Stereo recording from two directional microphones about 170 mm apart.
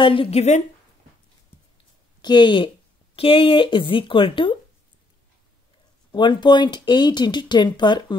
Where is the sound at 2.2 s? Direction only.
25° left (ahead or behind).